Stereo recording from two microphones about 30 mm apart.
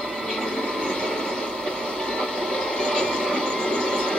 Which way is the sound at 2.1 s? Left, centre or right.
Left.